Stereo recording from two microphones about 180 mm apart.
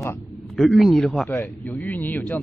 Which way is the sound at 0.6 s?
Centre (ahead or behind).